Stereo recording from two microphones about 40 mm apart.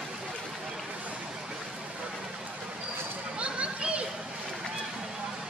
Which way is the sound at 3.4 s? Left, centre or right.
Right.